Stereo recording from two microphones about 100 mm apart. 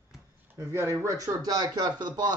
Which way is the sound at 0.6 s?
25° right (ahead or behind).